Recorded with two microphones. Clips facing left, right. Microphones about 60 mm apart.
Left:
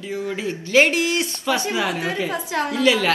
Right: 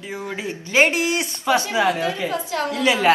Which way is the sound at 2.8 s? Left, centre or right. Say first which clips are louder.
Right 1 dB; right.